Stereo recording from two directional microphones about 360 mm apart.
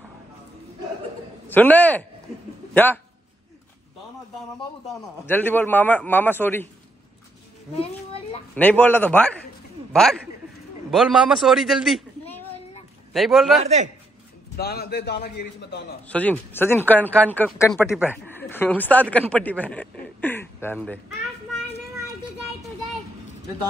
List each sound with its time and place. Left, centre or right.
1.5 s a man's voice: centre
5.0 s speech: centre
7.8 s a sound: centre
8.5 s speech: centre
10.9 s speech: centre
13.1 s speech: centre
14.6 s a man's voice: left
16.1 s speech: centre